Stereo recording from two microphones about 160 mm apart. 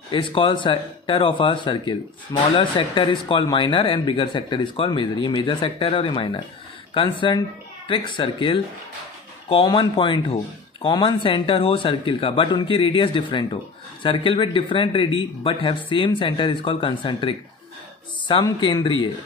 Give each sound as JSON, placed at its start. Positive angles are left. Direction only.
{"t": 0.1, "sound": "speech", "side_deg": 30}